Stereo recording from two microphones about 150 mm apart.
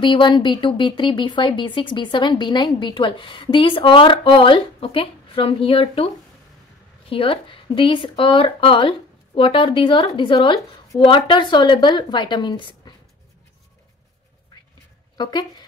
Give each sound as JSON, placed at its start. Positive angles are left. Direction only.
{"t": 0.0, "sound": "speech", "side_deg": 35}
{"t": 7.1, "sound": "speech", "side_deg": 35}
{"t": 15.1, "sound": "speech", "side_deg": 30}